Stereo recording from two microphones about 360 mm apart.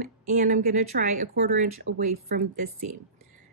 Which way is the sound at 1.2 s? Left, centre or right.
Right.